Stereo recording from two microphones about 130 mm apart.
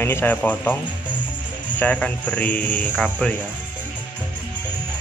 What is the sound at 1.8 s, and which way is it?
Speech, 10° left (ahead or behind).